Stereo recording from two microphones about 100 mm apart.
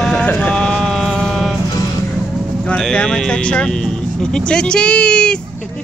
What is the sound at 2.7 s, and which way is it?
Speech, 10° left (ahead or behind).